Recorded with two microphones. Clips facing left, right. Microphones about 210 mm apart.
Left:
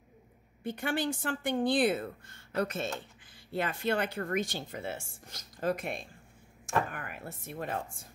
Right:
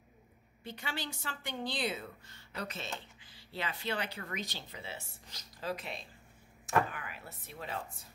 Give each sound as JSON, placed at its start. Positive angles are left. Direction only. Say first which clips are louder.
{"t": 0.7, "sound": "speech", "louder": "left 10 dB", "side_deg": 50}